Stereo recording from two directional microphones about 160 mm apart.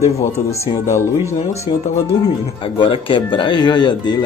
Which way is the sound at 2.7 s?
30° left (ahead or behind).